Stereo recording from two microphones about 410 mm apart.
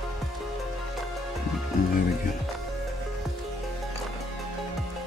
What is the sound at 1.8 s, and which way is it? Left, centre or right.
Music, left.